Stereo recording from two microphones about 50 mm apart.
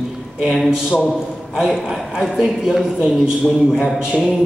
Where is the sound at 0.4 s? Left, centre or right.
Centre.